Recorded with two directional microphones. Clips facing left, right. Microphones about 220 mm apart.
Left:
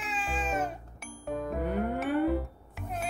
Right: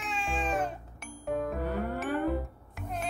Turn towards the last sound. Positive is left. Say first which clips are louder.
# even
turn(degrees=0)  # may be behind; listen again after turning